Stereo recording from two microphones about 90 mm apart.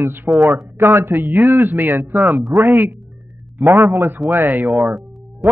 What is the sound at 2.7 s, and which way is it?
Speech, 30° right (ahead or behind).